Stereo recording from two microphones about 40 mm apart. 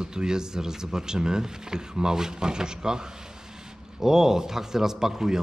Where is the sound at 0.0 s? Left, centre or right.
Centre.